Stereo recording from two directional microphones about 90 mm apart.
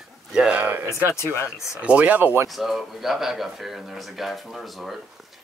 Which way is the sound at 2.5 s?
Centre (ahead or behind).